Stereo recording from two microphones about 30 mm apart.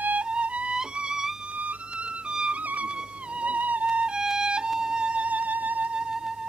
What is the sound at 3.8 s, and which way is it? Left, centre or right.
Music, right.